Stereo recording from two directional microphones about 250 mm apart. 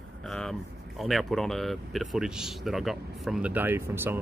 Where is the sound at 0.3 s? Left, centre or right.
Centre.